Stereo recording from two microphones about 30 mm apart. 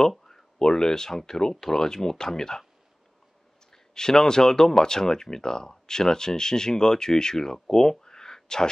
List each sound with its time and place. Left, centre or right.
0.2 s speech: centre
3.7 s speech: left
8.0 s a sound: left